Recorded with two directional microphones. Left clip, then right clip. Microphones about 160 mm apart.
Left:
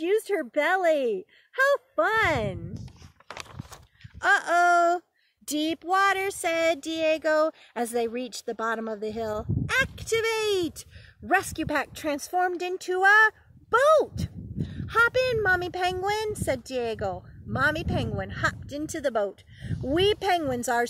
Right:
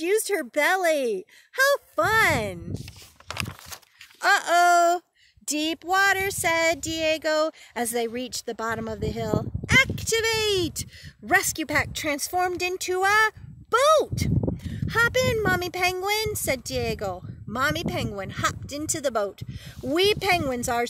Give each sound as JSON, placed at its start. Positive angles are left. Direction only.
{"t": 0.0, "sound": "speech", "side_deg": -50}
{"t": 3.4, "sound": "a sound", "side_deg": -20}
{"t": 4.2, "sound": "speech", "side_deg": -35}
{"t": 16.3, "sound": "speech", "side_deg": -50}
{"t": 17.0, "sound": "speech", "side_deg": -30}
{"t": 18.8, "sound": "speech", "side_deg": -30}